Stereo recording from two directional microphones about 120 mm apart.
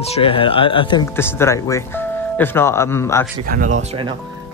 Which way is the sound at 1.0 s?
20° left (ahead or behind).